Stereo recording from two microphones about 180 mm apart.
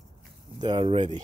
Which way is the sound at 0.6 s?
25° right (ahead or behind).